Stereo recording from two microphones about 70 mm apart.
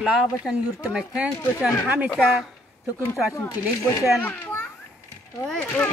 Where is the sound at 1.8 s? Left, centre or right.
Right.